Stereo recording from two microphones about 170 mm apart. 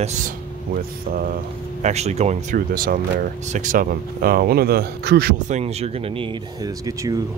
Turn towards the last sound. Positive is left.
turn(degrees=-20)  # may be behind; listen again after turning